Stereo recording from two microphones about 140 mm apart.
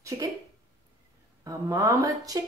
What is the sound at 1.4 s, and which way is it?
Speech, 25° right (ahead or behind).